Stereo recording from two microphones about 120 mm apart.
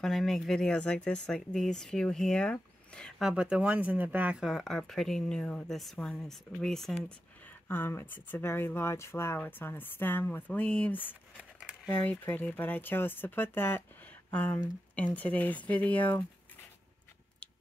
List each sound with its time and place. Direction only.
0.0 s speech: centre (ahead or behind)
3.2 s speech: 5° right (ahead or behind)
7.4 s speech: 15° left (ahead or behind)